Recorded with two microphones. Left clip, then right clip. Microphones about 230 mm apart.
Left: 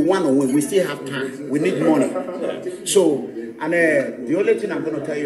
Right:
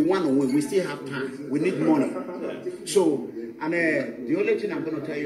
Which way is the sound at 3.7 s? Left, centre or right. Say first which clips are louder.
Left 7 dB; left.